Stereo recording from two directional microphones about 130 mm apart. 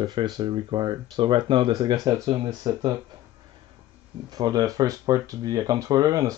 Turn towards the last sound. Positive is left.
turn(degrees=-25)  # may be behind; listen again after turning